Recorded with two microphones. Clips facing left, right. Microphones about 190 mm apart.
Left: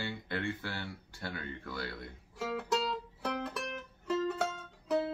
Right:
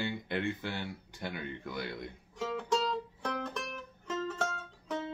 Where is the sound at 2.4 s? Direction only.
5° left (ahead or behind).